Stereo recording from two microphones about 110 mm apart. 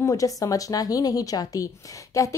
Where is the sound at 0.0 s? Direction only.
30° left (ahead or behind).